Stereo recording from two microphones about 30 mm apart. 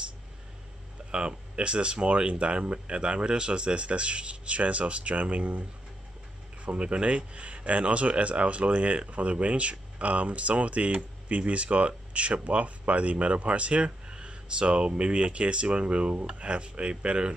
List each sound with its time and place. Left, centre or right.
1.1 s speech: right